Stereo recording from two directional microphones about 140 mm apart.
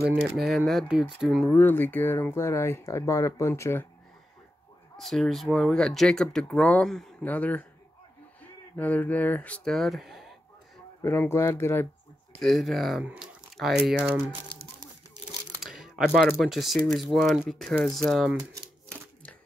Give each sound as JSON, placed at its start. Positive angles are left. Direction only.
{"t": 0.1, "sound": "speech", "side_deg": -5}
{"t": 1.5, "sound": "speech", "side_deg": 15}
{"t": 4.9, "sound": "speech", "side_deg": 0}
{"t": 8.7, "sound": "speech", "side_deg": 10}
{"t": 11.0, "sound": "speech", "side_deg": 15}
{"t": 12.4, "sound": "speech", "side_deg": 0}
{"t": 13.0, "sound": "speech", "side_deg": -10}
{"t": 15.6, "sound": "speech", "side_deg": -5}